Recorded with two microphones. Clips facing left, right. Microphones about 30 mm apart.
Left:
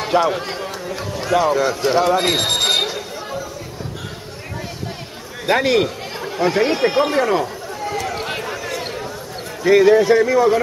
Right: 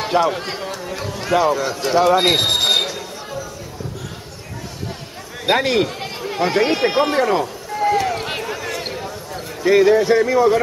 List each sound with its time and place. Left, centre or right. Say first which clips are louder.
0.0 s a man's voice: left 1 dB; centre
0.7 s a sound: even; centre
1.5 s a man's voice: left 2 dB; centre
2.1 s a sound: right 2 dB; centre
5.5 s a man's voice: left 1 dB; centre
6.3 s a man's voice: even; centre
7.8 s run: right 7 dB; centre
8.1 s basketball bounce: right 1 dB; centre
9.3 s a man's voice: left 1 dB; centre